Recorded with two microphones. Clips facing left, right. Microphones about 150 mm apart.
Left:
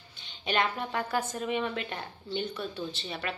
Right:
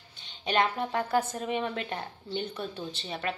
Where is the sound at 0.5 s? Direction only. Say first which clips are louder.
Right 2 dB; 30° right (ahead or behind).